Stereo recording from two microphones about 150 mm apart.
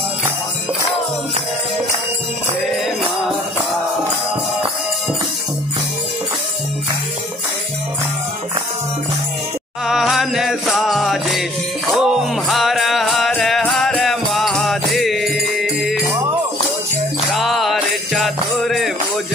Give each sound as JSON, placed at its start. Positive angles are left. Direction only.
{"t": 9.8, "sound": "music", "side_deg": 0}
{"t": 16.1, "sound": "music", "side_deg": -20}
{"t": 17.3, "sound": "jingle bell", "side_deg": 0}